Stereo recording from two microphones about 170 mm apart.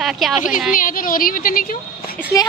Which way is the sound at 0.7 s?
55° left (ahead or behind).